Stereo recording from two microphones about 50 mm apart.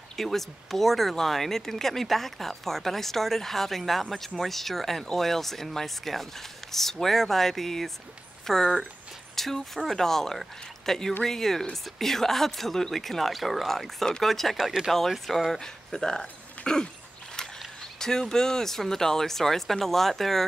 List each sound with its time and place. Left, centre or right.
0.1 s speech: centre
17.4 s a sound: centre
17.9 s speech: centre